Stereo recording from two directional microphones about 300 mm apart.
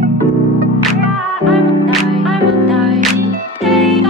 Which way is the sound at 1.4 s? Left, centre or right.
Centre.